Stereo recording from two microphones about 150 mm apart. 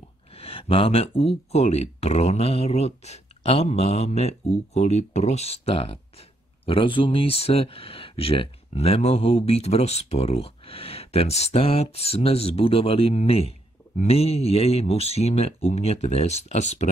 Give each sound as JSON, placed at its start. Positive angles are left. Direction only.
{"t": 0.3, "sound": "speech", "side_deg": 40}